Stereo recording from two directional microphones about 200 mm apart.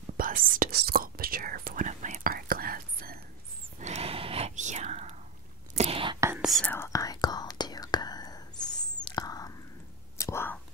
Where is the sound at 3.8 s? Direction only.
30° right (ahead or behind).